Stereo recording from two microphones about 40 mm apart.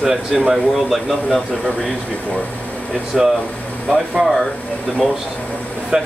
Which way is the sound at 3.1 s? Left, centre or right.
Centre.